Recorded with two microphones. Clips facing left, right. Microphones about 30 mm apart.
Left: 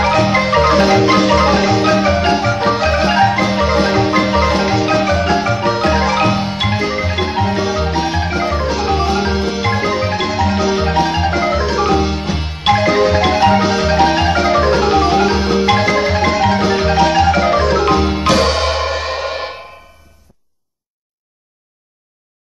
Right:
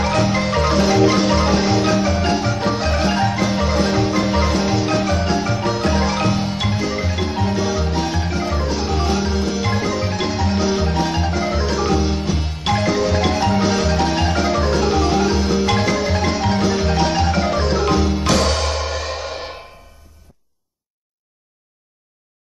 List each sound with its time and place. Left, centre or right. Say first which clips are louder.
0.0 s marimba: left 5 dB; left
4.4 s music: left 5 dB; left
4.8 s marimba: left 5 dB; left
6.1 s music: left 5 dB; left
9.2 s marimba: left 4 dB; left
10.2 s marimba: left 2 dB; centre
10.8 s marimba: left 5 dB; left
11.7 s music: left 3 dB; left
12.2 s marimba: left 2 dB; left
17.0 s marimba: left 9 dB; centre
17.6 s music: left 6 dB; centre
17.8 s music: left 4 dB; left